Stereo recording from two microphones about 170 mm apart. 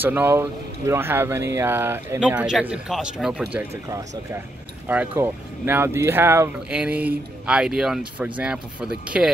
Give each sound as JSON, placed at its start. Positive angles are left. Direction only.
{"t": 0.0, "sound": "speech", "side_deg": -10}
{"t": 4.8, "sound": "speech", "side_deg": -10}